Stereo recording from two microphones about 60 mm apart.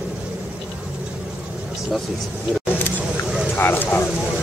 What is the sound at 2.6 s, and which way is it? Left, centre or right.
Single-lens reflex camera, left.